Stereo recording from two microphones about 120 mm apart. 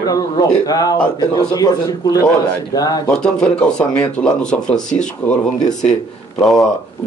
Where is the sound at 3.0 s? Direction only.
5° left (ahead or behind).